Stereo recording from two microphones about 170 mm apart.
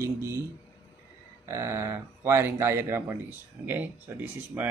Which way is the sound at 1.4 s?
15° right (ahead or behind).